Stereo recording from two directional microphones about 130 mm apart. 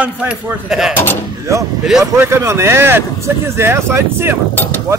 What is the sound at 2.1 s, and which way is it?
Speech, 20° right (ahead or behind).